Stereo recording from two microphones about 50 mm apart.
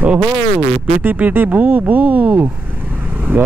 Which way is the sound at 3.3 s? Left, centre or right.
Right.